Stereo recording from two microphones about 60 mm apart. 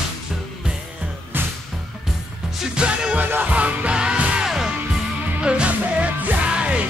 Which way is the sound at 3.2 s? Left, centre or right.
Right.